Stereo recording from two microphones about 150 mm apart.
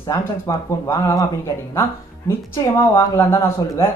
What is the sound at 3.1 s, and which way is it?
Speech, 15° left (ahead or behind).